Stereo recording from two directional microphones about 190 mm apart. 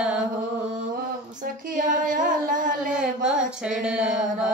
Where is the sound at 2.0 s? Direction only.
45° right (ahead or behind).